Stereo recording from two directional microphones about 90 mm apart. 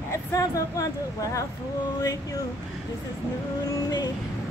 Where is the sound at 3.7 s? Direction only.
45° left (ahead or behind).